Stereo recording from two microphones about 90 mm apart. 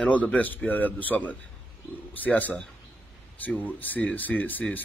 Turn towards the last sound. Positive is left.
turn(degrees=20)  # may be behind; listen again after turning